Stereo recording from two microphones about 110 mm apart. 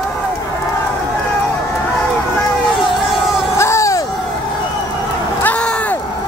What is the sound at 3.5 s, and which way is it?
Crowd, 25° left (ahead or behind).